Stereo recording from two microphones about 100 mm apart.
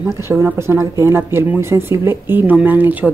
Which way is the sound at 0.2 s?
20° right (ahead or behind).